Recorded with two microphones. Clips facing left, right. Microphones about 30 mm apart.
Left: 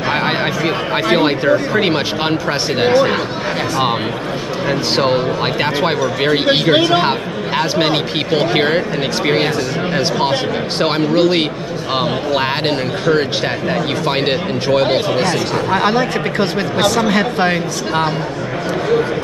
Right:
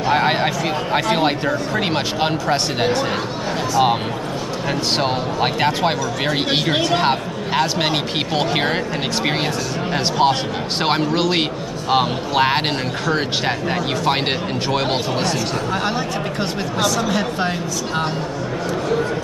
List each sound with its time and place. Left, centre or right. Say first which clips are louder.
0.1 s a man's voice: even; centre
4.6 s a man's voice: left 5 dB; centre
7.0 s speech: left 2 dB; centre
15.7 s speech: left 10 dB; left